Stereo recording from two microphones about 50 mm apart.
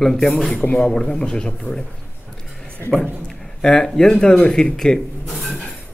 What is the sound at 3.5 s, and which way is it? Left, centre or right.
Speech, centre.